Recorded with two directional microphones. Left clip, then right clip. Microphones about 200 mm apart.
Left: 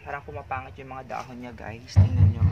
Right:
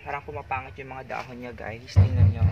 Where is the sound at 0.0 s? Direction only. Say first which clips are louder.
Right 2 dB; 10° right (ahead or behind).